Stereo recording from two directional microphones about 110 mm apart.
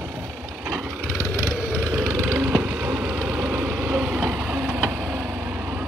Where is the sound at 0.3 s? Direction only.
10° right (ahead or behind).